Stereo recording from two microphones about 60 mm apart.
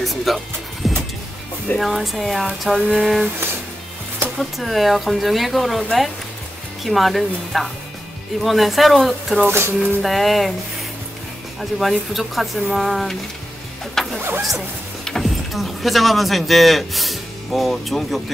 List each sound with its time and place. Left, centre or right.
0.0 s speech: centre
0.8 s vehicle: centre
1.8 s speech: centre
4.4 s speech: centre
9.5 s speech: right
10.0 s speech: centre
11.8 s speech: centre
14.0 s printer: centre
15.0 s speech: centre